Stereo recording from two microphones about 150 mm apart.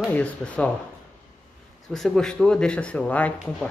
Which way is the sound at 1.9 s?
Centre (ahead or behind).